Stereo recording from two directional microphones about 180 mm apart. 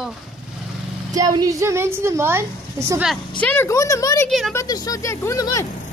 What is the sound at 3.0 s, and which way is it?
Speech, 5° left (ahead or behind).